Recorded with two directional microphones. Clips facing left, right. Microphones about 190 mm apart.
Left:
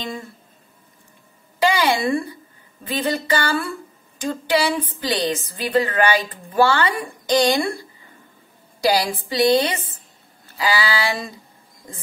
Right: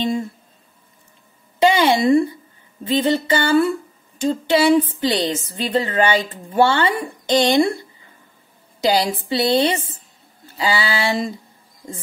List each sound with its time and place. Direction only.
1.6 s a woman's voice: 25° right (ahead or behind)
8.8 s a woman's voice: 20° right (ahead or behind)